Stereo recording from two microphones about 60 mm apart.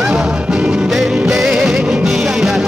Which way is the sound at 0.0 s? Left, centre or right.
Centre.